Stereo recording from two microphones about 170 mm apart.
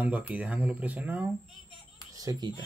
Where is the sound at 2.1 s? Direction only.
20° right (ahead or behind).